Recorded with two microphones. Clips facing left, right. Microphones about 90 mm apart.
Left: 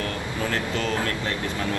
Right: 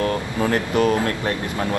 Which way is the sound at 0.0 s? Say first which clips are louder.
Right 7 dB; 35° right (ahead or behind).